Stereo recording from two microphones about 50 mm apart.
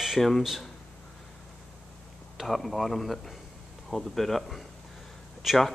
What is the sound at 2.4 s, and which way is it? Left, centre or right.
Speech, centre.